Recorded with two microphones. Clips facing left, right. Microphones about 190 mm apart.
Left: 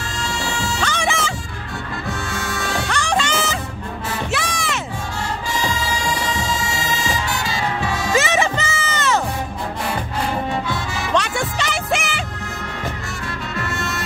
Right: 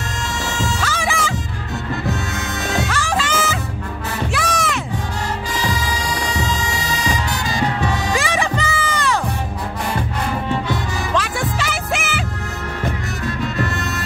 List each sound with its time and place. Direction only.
0.7 s music: 5° right (ahead or behind)
2.3 s music: 20° right (ahead or behind)
2.9 s music: 5° right (ahead or behind)
4.3 s heart sounds: centre (ahead or behind)
8.3 s music: 25° left (ahead or behind)
11.1 s music: centre (ahead or behind)